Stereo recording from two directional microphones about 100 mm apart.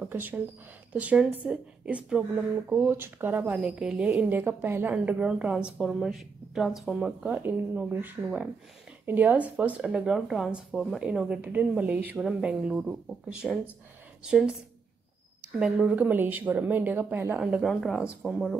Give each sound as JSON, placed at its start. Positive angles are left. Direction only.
{"t": 0.0, "sound": "a woman's voice", "side_deg": -15}
{"t": 2.3, "sound": "speech", "side_deg": -25}
{"t": 4.2, "sound": "a woman's voice", "side_deg": -20}
{"t": 11.1, "sound": "a woman's voice", "side_deg": -10}
{"t": 15.6, "sound": "speech", "side_deg": -10}
{"t": 17.4, "sound": "a woman's voice", "side_deg": -10}
{"t": 17.6, "sound": "speech", "side_deg": 0}